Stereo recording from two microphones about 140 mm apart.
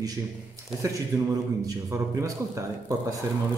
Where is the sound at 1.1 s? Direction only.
20° right (ahead or behind).